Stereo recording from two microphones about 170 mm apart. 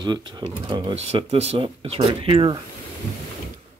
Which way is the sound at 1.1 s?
35° right (ahead or behind).